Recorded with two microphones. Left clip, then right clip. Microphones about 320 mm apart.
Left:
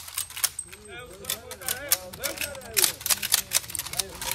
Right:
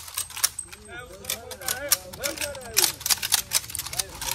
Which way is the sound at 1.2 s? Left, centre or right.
Centre.